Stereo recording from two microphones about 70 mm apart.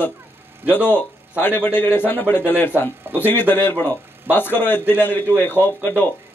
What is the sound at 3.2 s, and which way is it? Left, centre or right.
A man's voice, left.